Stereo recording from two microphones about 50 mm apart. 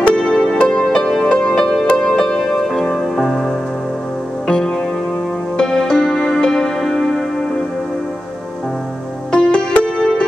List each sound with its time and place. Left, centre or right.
0.0 s music: centre
1.3 s music: left
1.6 s music: centre
3.2 s music: centre
4.5 s music: centre
9.3 s music: centre